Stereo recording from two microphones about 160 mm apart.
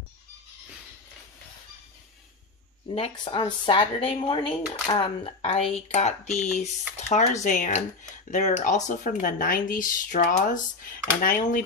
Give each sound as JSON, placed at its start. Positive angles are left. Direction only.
{"t": 2.9, "sound": "speech", "side_deg": 35}